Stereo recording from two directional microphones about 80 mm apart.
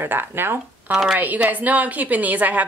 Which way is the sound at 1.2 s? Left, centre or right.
Right.